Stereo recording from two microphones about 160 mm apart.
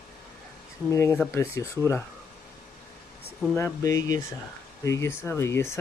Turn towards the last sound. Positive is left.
turn(degrees=15)  # may be behind; listen again after turning